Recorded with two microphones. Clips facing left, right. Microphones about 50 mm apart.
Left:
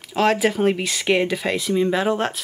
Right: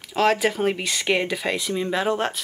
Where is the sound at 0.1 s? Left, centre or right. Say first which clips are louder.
Left 1 dB; centre.